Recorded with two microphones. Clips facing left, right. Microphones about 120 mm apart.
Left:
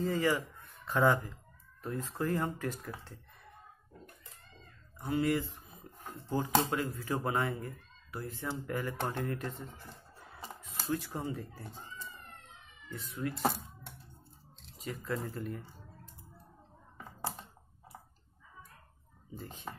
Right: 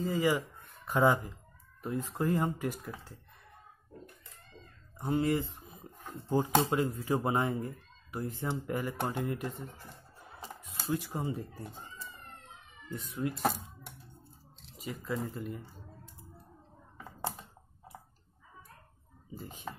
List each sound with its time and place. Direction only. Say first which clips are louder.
0.0 s speech: right 1 dB; 15° right (ahead or behind)
4.9 s speech: right 1 dB; 25° right (ahead or behind)
14.6 s speech: even; 5° right (ahead or behind)
19.3 s speech: right 1 dB; 10° right (ahead or behind)